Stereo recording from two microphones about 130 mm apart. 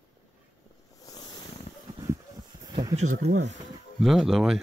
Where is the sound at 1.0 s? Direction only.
30° left (ahead or behind).